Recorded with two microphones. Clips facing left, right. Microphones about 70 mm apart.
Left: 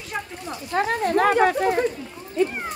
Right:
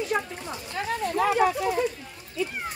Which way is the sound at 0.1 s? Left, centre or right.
Centre.